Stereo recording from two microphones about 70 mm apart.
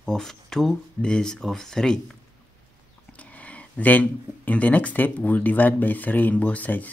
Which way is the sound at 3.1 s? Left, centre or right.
Left.